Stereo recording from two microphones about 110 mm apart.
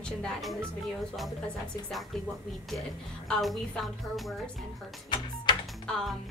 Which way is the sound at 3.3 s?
Centre (ahead or behind).